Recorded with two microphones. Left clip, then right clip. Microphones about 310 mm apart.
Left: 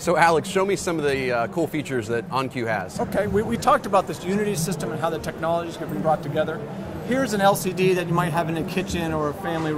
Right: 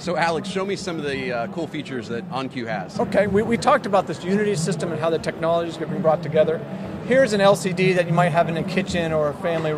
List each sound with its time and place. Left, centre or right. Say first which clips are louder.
0.0 s a man's voice: left 4 dB; left
3.0 s speech: right 7 dB; right